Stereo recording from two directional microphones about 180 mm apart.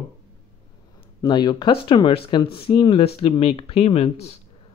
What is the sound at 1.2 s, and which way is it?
Speech, 25° left (ahead or behind).